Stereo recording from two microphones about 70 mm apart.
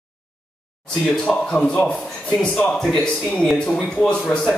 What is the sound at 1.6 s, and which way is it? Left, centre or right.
Speech, centre.